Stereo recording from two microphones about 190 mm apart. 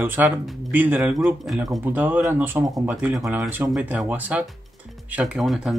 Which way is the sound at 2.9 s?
Centre (ahead or behind).